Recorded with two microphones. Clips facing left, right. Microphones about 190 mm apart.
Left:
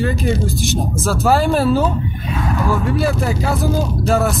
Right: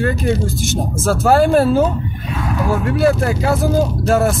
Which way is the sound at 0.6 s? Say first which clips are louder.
Right 1 dB; 45° right (ahead or behind).